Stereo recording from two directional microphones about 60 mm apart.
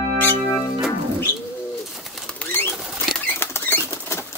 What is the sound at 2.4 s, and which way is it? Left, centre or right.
Bird, left.